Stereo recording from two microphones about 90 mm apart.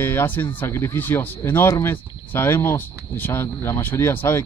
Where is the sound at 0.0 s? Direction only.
25° left (ahead or behind).